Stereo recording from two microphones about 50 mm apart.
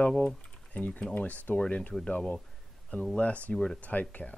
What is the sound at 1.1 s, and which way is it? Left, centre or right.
Speech, left.